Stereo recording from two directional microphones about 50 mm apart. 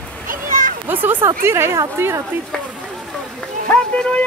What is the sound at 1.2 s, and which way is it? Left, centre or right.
Speech, right.